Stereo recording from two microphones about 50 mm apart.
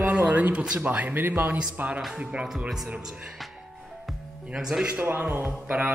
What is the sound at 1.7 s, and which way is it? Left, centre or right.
Speech, right.